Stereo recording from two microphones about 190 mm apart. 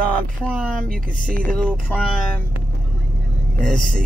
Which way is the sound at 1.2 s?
5° left (ahead or behind).